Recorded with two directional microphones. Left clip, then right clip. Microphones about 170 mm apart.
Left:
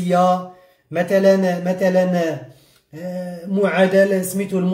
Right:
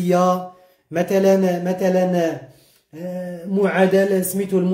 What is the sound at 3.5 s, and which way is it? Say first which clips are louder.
Speech: left 2 dB; 25° right (ahead or behind).